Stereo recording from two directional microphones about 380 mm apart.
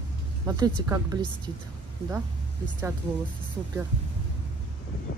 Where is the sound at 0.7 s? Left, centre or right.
Centre.